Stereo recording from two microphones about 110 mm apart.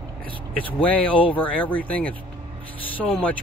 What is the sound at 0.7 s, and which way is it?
Speech, 15° left (ahead or behind).